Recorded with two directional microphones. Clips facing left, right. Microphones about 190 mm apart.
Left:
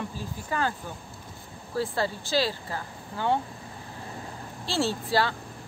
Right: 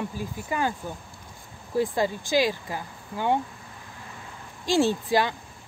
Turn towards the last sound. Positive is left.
turn(degrees=-15)  # may be behind; listen again after turning